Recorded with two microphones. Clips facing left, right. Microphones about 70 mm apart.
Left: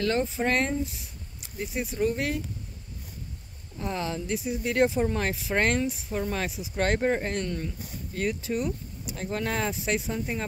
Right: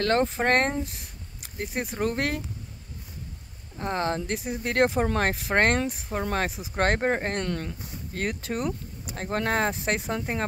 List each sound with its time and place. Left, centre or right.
0.0 s speech: right
3.7 s speech: right
7.4 s speech: right